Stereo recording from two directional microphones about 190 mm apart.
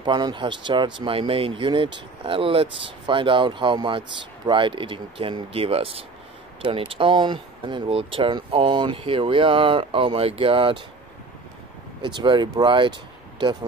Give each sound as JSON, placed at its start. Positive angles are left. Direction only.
{"t": 0.0, "sound": "speech", "side_deg": -25}
{"t": 12.0, "sound": "speech", "side_deg": -25}